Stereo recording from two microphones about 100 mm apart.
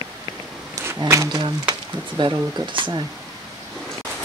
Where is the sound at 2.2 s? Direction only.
50° right (ahead or behind).